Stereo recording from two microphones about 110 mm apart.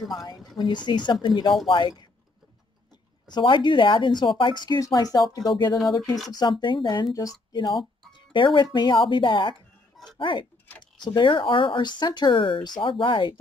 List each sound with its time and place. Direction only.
0.6 s speech: 45° left (ahead or behind)
3.3 s speech: 45° left (ahead or behind)
7.2 s speech: 35° left (ahead or behind)
8.1 s music: 50° left (ahead or behind)
8.7 s speech: 40° left (ahead or behind)